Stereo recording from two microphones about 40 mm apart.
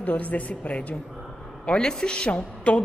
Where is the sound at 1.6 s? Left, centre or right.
Centre.